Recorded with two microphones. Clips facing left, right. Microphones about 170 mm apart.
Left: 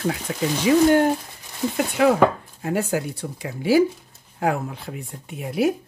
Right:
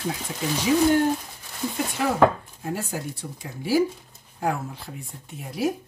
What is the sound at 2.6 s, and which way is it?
Speech, 70° left (ahead or behind).